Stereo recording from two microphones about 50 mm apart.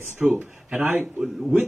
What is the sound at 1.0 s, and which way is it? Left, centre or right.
Speech, centre.